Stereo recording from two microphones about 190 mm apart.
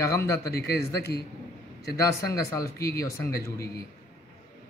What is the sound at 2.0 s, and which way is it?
A man's voice, 15° left (ahead or behind).